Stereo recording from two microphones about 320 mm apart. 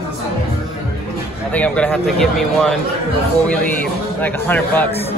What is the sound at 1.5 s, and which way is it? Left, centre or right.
Speech, centre.